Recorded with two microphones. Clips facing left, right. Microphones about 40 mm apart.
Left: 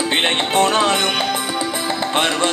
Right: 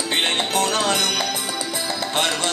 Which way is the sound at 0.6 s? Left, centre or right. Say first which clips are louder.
Left 7 dB; left.